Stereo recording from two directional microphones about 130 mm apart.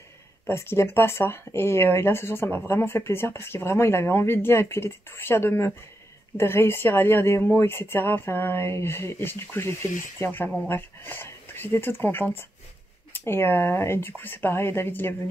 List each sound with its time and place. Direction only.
0.5 s speech: 20° left (ahead or behind)